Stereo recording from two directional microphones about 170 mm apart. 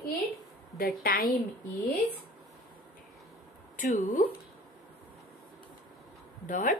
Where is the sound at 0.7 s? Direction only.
60° left (ahead or behind).